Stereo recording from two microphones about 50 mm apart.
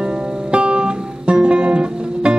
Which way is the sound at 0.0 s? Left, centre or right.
Right.